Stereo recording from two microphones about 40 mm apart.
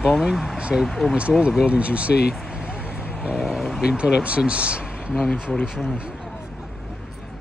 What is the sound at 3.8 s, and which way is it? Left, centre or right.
Speech, right.